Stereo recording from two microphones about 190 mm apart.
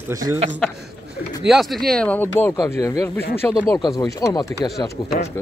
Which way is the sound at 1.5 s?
Centre (ahead or behind).